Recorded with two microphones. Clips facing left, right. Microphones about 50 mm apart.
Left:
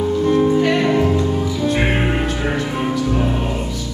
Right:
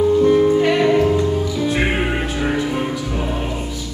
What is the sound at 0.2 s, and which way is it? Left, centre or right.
Music, centre.